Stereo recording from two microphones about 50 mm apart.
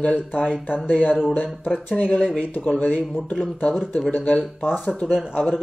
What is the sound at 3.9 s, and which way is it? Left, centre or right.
Speech, left.